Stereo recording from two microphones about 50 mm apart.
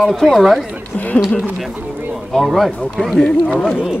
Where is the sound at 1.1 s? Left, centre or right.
Left.